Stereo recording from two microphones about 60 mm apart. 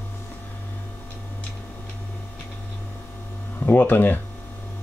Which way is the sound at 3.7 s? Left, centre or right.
Left.